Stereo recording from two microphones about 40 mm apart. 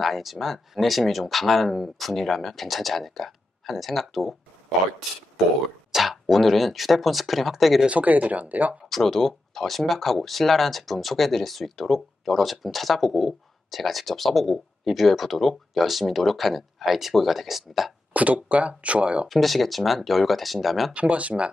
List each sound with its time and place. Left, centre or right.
0.0 s speech: centre
5.9 s speech: centre
7.9 s speech: right
8.9 s speech: centre
18.1 s speech: right
19.2 s speech: centre
20.9 s speech: right